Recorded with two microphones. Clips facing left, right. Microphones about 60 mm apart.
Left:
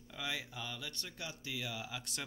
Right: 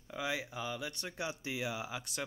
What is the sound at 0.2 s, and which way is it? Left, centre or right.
Speech, centre.